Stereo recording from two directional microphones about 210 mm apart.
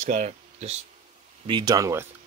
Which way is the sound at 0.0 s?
35° right (ahead or behind).